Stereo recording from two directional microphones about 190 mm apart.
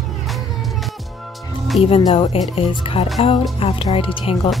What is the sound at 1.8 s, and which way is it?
Speech, 30° left (ahead or behind).